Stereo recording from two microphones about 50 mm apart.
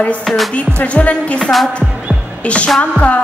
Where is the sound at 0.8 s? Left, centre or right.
Left.